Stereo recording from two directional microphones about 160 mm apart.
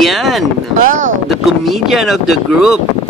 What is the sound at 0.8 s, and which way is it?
Speech, 55° right (ahead or behind).